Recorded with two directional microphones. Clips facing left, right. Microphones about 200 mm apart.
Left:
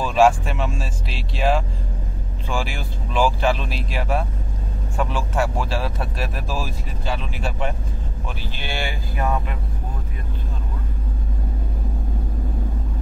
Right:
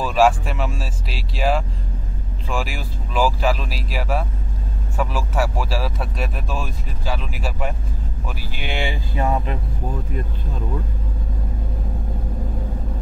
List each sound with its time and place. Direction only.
0.0 s a sound: centre (ahead or behind)
2.5 s speech: centre (ahead or behind)
8.4 s speech: 15° right (ahead or behind)